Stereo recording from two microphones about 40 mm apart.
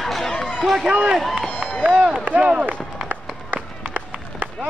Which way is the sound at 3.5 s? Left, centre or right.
Right.